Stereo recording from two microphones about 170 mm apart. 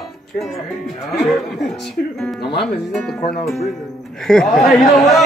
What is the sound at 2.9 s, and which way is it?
Speech, centre (ahead or behind).